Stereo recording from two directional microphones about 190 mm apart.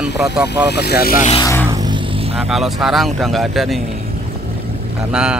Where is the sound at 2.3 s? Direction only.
Centre (ahead or behind).